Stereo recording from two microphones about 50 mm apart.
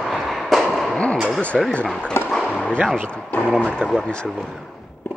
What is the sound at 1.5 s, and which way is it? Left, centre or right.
Speech, centre.